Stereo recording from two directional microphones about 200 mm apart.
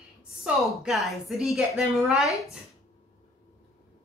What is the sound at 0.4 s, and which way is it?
A woman's voice, centre (ahead or behind).